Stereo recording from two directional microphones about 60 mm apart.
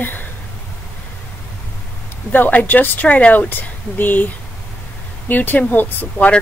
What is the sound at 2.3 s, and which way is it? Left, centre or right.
Speech, left.